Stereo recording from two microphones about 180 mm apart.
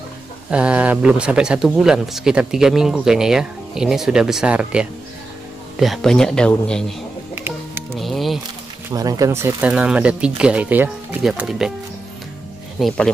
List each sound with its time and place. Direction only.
0.5 s speech: 5° right (ahead or behind)
7.9 s music: centre (ahead or behind)
8.9 s speech: 20° right (ahead or behind); by 11.7 s centre (ahead or behind)
12.7 s speech: centre (ahead or behind)